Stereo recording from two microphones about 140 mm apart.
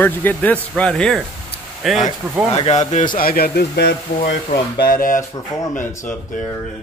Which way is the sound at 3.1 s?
90° left.